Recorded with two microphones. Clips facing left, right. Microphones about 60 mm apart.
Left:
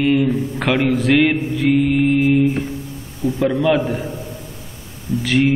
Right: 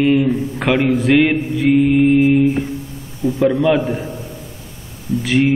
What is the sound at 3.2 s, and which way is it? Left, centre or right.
Mantra, centre.